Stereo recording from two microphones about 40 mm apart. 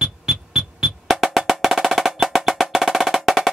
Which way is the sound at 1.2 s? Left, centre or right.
Centre.